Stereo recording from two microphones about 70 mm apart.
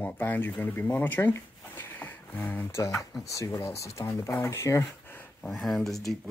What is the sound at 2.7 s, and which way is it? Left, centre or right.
Speech, left.